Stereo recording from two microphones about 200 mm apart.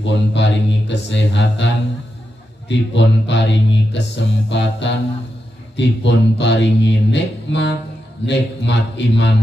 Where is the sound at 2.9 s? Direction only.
60° left (ahead or behind).